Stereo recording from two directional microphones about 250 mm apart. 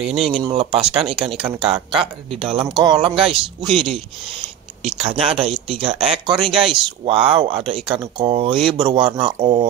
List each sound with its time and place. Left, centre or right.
0.0 s speech: centre
0.3 s speech: right
3.6 s speech: centre
4.8 s speech: right